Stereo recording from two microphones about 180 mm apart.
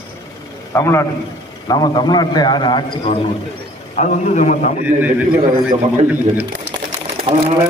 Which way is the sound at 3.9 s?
40° left (ahead or behind).